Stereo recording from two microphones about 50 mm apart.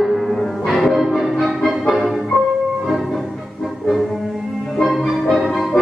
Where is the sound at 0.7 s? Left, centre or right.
Centre.